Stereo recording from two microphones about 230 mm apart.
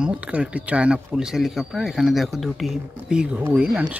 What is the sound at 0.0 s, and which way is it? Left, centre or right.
Speech, centre.